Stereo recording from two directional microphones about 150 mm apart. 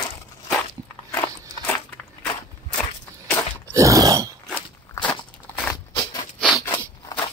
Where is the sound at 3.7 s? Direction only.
20° right (ahead or behind).